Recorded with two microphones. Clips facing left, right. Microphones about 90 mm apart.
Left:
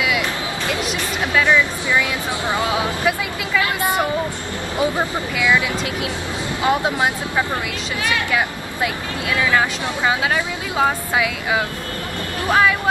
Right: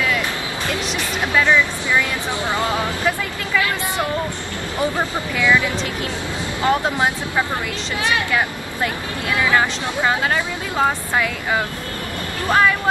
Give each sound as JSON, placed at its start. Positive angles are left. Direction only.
{"t": 1.4, "sound": "speech", "side_deg": 5}
{"t": 4.7, "sound": "speech", "side_deg": 10}
{"t": 6.6, "sound": "speech", "side_deg": 10}